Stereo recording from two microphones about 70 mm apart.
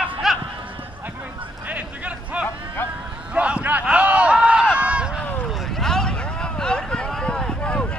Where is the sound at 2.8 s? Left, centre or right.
Left.